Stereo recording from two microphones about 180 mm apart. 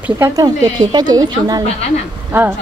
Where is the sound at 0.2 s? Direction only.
20° right (ahead or behind).